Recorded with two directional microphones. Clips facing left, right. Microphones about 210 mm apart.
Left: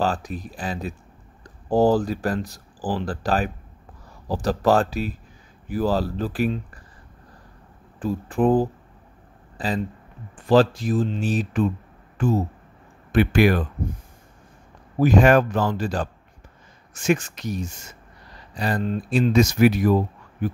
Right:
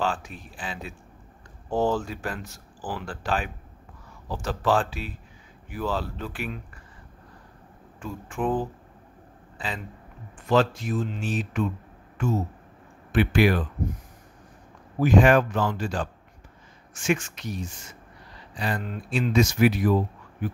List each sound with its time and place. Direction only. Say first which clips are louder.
0.0 s speech: left 4 dB; 40° left (ahead or behind)
8.0 s speech: left 8 dB; 35° left (ahead or behind)
15.0 s speech: left 2 dB; 40° left (ahead or behind)